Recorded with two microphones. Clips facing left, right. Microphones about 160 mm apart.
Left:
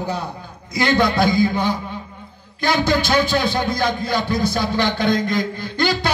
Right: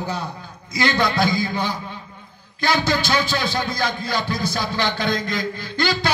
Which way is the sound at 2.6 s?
15° left (ahead or behind).